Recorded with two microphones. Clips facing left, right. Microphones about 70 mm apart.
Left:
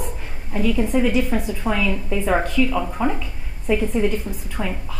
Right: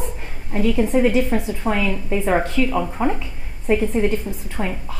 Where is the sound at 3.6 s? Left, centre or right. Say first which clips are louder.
Right 1 dB; right.